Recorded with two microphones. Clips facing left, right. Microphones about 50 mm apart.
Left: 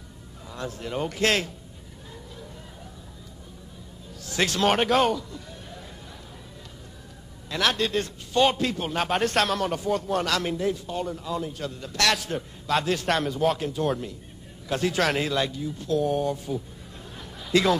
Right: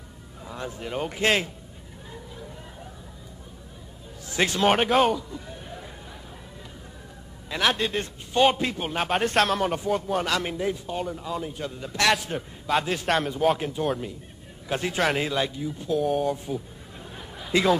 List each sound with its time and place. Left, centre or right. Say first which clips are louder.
0.5 s a man's voice: even; centre
4.3 s a man's voice: right 1 dB; centre
7.4 s a man's voice: even; centre
16.0 s a man's voice: right 1 dB; centre
16.5 s a sound: even; centre